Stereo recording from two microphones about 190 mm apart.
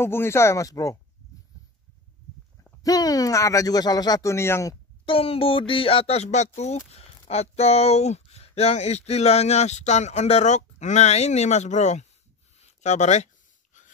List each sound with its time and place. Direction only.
0.0 s speech: 10° left (ahead or behind)
2.8 s speech: 20° left (ahead or behind)
5.0 s speech: 30° left (ahead or behind)
12.5 s a sound: 35° left (ahead or behind)